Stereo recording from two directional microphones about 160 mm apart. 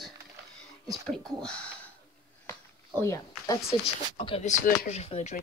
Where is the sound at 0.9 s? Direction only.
5° left (ahead or behind).